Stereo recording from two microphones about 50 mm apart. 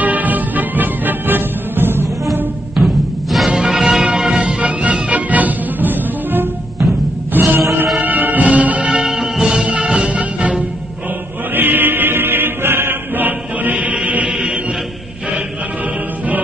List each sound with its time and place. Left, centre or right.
0.0 s music: right
2.7 s music: centre; by 8.9 s right
8.9 s music: centre; by 10.6 s right
11.5 s choir: right